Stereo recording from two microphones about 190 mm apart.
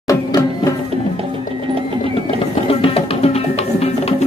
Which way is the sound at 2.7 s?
30° left (ahead or behind).